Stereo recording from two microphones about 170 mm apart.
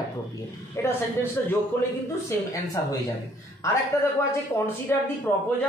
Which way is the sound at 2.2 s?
20° left (ahead or behind).